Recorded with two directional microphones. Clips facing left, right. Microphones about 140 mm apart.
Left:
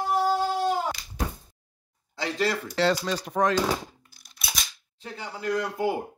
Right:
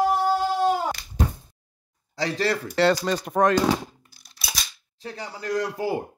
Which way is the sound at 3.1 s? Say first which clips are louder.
Right 4 dB; 55° right (ahead or behind).